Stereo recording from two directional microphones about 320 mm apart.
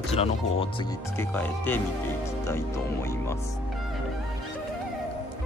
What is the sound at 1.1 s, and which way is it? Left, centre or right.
Speech, centre.